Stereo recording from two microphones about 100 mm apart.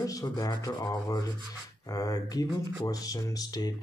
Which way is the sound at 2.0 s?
40° left (ahead or behind).